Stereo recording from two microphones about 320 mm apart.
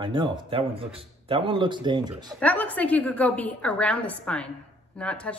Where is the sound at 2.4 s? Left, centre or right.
Centre.